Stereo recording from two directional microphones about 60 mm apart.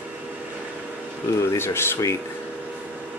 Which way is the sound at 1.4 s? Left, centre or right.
Left.